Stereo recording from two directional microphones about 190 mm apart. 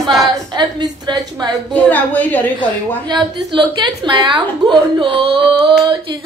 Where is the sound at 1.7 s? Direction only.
10° left (ahead or behind).